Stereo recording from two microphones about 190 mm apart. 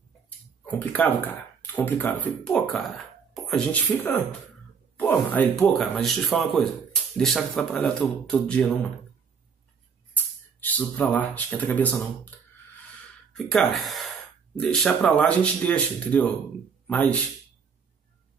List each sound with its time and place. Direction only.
0.7 s speech: 10° left (ahead or behind)
10.1 s speech: 10° left (ahead or behind)
13.3 s speech: centre (ahead or behind)